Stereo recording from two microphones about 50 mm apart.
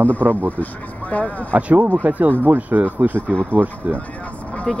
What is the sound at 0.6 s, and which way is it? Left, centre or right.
Speech, left.